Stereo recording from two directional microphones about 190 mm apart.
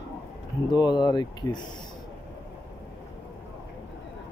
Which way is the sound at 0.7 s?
25° left (ahead or behind).